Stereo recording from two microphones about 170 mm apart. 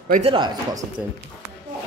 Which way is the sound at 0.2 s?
30° right (ahead or behind).